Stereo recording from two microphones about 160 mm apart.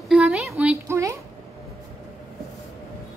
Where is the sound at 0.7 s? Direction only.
15° right (ahead or behind).